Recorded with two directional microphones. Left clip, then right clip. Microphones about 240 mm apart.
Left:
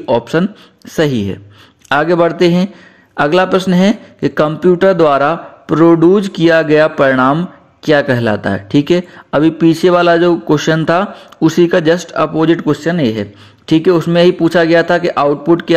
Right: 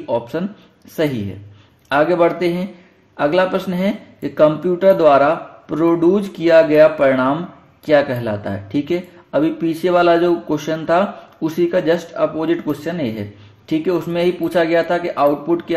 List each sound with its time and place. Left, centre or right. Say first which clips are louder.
0.0 s speech: left 8 dB; left